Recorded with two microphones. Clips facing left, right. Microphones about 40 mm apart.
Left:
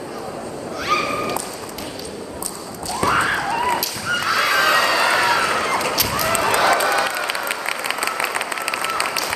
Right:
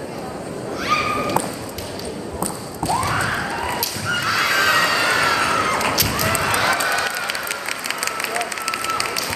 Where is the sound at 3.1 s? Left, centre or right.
Left.